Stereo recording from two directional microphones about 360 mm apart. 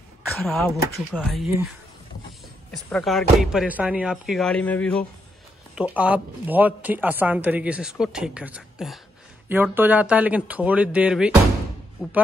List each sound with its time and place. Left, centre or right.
0.3 s speech: centre
2.7 s speech: centre